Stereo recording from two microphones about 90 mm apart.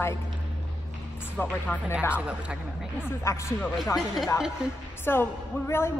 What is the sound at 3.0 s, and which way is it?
Speech, 35° left (ahead or behind).